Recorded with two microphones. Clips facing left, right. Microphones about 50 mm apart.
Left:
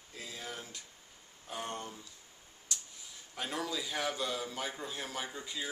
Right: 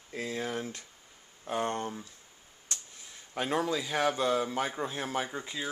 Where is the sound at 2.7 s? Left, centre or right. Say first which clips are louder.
Right 1 dB; right.